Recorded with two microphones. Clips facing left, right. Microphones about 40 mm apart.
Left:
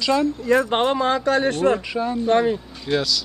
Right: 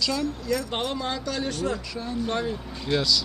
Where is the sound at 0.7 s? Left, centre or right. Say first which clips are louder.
Left 9 dB; left.